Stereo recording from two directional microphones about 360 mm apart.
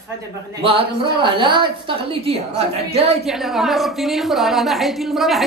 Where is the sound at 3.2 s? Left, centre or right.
Centre.